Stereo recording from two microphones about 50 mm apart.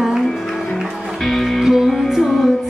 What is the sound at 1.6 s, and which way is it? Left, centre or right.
Music, centre.